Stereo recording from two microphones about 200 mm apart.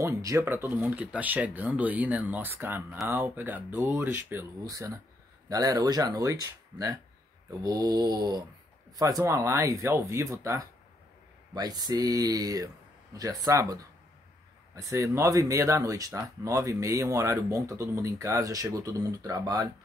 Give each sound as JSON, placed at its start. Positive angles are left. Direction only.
{"t": 0.0, "sound": "speech", "side_deg": -15}